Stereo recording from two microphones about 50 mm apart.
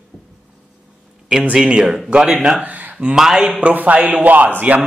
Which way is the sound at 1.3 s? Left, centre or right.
Right.